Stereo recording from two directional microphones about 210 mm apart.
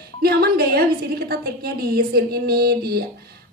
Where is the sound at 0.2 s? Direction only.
50° right (ahead or behind).